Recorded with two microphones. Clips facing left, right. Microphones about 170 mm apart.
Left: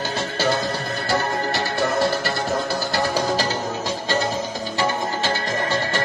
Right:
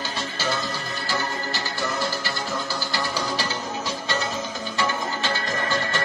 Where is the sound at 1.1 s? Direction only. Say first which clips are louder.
Left 6 dB; 60° left (ahead or behind).